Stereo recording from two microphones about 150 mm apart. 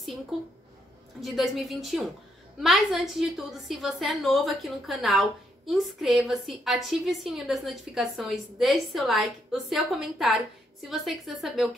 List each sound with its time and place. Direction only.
1.2 s a woman's voice: centre (ahead or behind)